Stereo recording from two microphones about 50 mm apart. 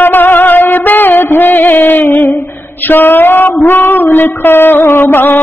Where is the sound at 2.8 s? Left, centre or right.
Left.